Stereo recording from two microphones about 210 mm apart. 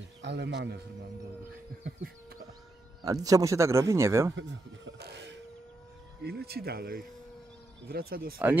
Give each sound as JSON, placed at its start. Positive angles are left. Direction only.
{"t": 0.2, "sound": "speech", "side_deg": -55}
{"t": 3.0, "sound": "speech", "side_deg": -15}
{"t": 4.4, "sound": "a sound", "side_deg": -60}
{"t": 6.2, "sound": "speech", "side_deg": -50}